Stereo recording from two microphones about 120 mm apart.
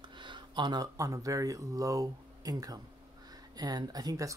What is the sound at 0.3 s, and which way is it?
Speech, 40° right (ahead or behind).